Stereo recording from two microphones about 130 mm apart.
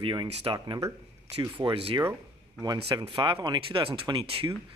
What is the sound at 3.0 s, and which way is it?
Speech, 40° right (ahead or behind).